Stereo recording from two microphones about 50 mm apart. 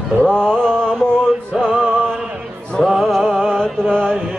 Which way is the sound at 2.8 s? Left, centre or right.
Centre.